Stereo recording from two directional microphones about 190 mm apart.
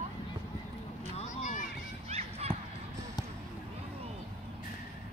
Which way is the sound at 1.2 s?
40° left (ahead or behind).